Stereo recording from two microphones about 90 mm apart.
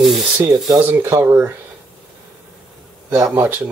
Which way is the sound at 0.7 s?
20° right (ahead or behind).